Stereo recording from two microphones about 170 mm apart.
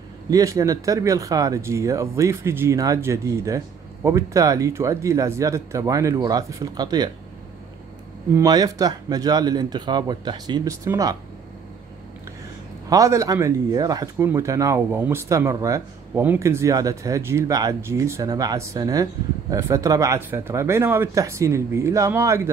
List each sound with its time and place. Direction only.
0.3 s speech: 20° right (ahead or behind)
8.3 s speech: 20° right (ahead or behind)
12.9 s speech: 20° right (ahead or behind)